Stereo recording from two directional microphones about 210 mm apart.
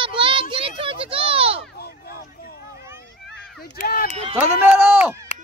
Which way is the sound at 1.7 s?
45° left (ahead or behind).